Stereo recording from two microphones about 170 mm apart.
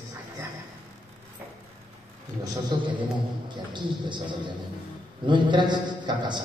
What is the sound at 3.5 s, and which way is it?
A man's voice, 25° right (ahead or behind).